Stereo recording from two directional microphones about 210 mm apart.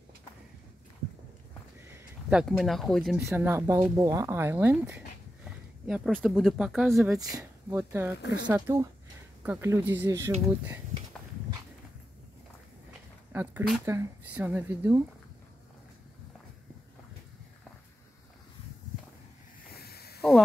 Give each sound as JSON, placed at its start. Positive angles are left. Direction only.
{"t": 1.9, "sound": "speech", "side_deg": -10}
{"t": 3.2, "sound": "speech", "side_deg": -10}
{"t": 7.2, "sound": "speech", "side_deg": -15}
{"t": 8.2, "sound": "speech", "side_deg": 55}
{"t": 8.5, "sound": "speech", "side_deg": -10}
{"t": 13.3, "sound": "speech", "side_deg": -10}
{"t": 19.7, "sound": "snake", "side_deg": 50}
{"t": 20.2, "sound": "a sound", "side_deg": 0}